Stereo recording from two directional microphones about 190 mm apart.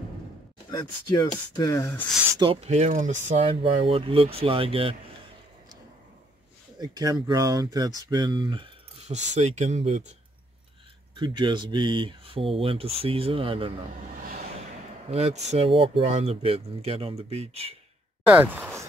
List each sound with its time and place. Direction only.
0.7 s speech: 20° left (ahead or behind)
2.3 s speech: 30° right (ahead or behind)
6.8 s speech: 20° right (ahead or behind)
9.0 s speech: 35° right (ahead or behind)
11.1 s speech: 25° right (ahead or behind)
15.0 s speech: 35° right (ahead or behind)
18.2 s a sound: 10° right (ahead or behind)